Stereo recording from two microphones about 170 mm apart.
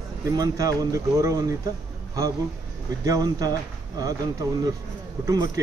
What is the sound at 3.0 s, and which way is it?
A man's voice, 20° right (ahead or behind).